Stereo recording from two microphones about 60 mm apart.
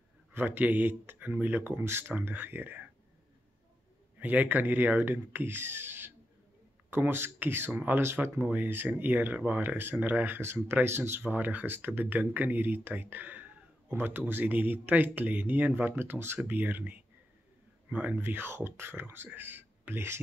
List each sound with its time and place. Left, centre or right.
0.3 s speech: right
4.2 s a man's voice: right